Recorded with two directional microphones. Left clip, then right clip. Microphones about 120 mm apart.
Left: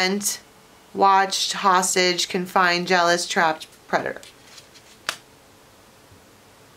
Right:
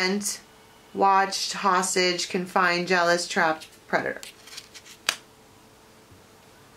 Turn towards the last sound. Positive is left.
turn(degrees=-15)  # may be behind; listen again after turning